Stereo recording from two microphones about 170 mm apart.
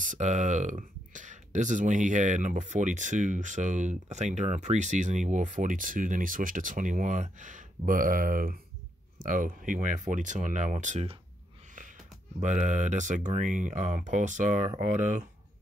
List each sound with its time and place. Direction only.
0.0 s speech: 45° right (ahead or behind)
12.4 s speech: 45° right (ahead or behind)